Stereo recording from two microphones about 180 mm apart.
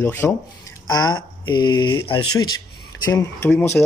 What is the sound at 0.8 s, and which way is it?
Speech, 25° left (ahead or behind).